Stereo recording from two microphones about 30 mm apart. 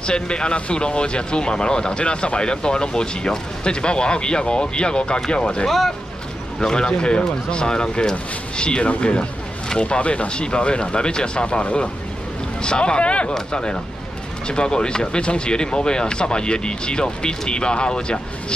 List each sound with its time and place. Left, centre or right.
0.0 s speech: left
5.7 s speech: centre
6.6 s speech: left
9.8 s speech: left
13.5 s speech: left